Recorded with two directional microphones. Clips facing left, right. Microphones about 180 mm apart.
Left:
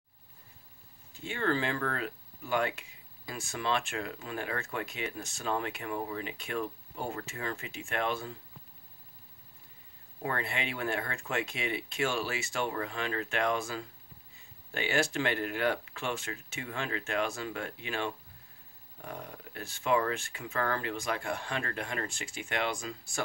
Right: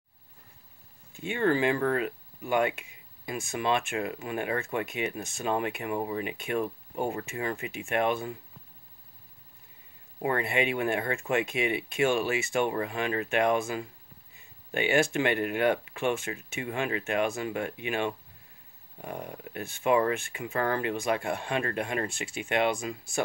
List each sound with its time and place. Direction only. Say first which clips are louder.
1.1 s speech: right 5 dB; 15° right (ahead or behind)
10.2 s speech: right 7 dB; 15° right (ahead or behind)